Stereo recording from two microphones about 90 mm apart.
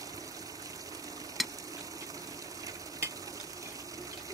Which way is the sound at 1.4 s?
Centre (ahead or behind).